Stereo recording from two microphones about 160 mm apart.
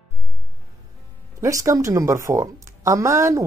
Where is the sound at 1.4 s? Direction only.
20° right (ahead or behind).